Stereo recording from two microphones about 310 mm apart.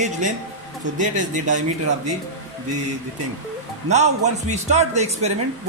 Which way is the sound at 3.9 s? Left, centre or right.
Right.